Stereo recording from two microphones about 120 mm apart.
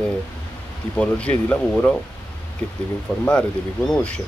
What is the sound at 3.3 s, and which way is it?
Speech, 5° left (ahead or behind).